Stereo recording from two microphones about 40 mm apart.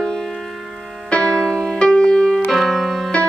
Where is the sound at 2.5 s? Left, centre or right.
Centre.